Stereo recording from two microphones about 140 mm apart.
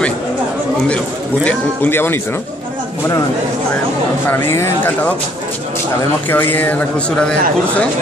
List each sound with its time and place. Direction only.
1.4 s speech: 15° left (ahead or behind)
4.3 s speech: 15° left (ahead or behind)
6.3 s speech: 15° left (ahead or behind)